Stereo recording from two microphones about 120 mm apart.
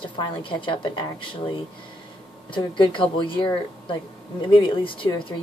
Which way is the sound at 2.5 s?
45° left (ahead or behind).